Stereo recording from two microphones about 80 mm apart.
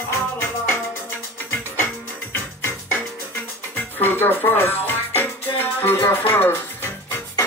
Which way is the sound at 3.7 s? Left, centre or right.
Left.